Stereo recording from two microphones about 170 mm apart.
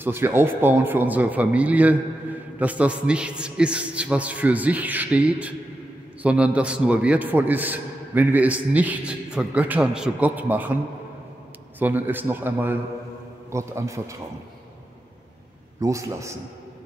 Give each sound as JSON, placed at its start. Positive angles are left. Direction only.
{"t": 0.0, "sound": "a man's voice", "side_deg": -15}
{"t": 11.8, "sound": "a man's voice", "side_deg": -10}
{"t": 15.8, "sound": "a man's voice", "side_deg": -20}